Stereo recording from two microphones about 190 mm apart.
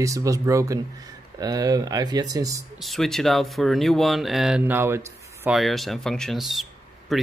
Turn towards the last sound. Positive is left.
turn(degrees=0)  # may be behind; listen again after turning